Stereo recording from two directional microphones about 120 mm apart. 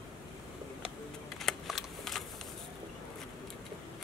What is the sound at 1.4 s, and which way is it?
Shuffling cards, centre (ahead or behind).